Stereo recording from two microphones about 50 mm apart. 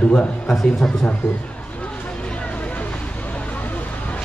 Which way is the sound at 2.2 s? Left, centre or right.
Left.